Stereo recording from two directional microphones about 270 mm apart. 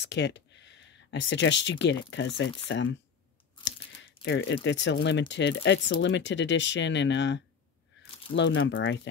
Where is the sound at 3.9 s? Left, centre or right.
Left.